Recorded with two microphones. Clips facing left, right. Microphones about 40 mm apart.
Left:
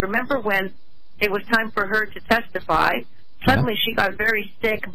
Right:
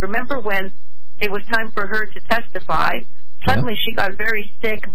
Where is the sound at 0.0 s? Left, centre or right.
Centre.